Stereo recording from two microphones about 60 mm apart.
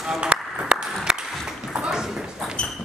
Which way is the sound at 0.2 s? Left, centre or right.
Centre.